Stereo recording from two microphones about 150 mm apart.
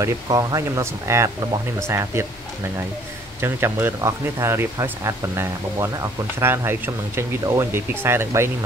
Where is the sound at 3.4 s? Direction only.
15° right (ahead or behind).